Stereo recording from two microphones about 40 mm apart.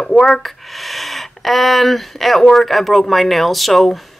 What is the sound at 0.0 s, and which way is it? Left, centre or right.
Speech, centre.